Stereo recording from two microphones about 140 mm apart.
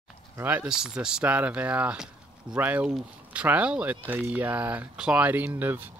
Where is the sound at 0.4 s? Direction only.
15° right (ahead or behind).